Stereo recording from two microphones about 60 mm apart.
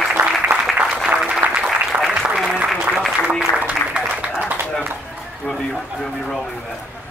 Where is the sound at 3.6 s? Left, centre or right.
Centre.